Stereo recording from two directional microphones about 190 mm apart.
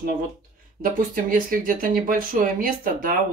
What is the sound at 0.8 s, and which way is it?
Speech, 45° right (ahead or behind).